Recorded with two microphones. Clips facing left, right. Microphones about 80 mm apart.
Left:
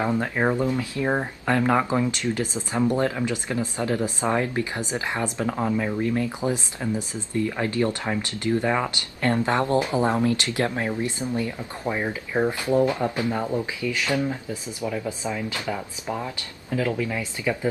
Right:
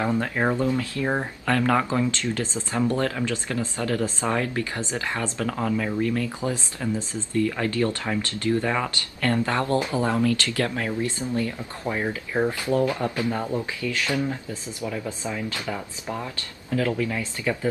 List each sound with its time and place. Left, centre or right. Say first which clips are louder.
0.0 s speech: left 1 dB; centre